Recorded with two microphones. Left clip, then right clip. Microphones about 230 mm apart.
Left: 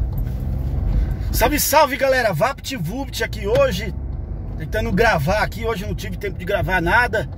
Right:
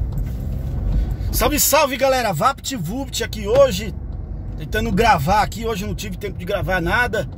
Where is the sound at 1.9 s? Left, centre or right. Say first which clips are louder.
Even; centre.